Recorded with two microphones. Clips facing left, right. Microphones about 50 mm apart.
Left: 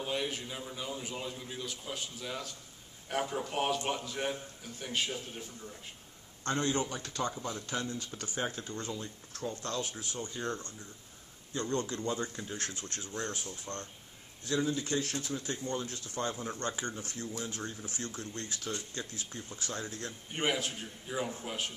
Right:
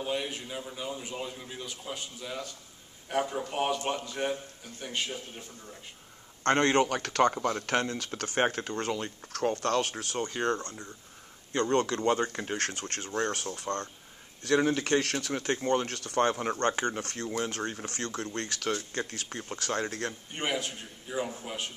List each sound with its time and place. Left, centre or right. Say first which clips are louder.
0.0 s a man's voice: right 2 dB; centre
5.1 s a man's voice: even; centre
6.4 s speech: right 8 dB; right
14.4 s speech: right 6 dB; right
20.3 s a man's voice: left 1 dB; centre